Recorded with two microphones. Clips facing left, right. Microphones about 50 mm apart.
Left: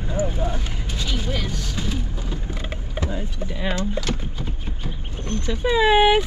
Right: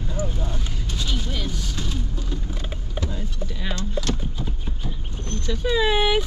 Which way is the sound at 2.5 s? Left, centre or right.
Left.